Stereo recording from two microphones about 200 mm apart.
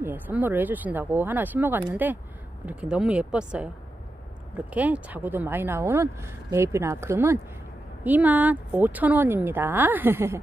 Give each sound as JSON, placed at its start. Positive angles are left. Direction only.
{"t": 0.0, "sound": "speech", "side_deg": -10}